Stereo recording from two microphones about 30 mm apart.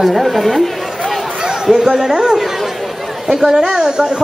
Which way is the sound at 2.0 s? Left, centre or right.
Centre.